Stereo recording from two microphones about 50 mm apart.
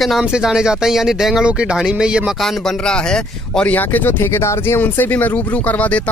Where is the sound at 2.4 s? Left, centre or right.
Centre.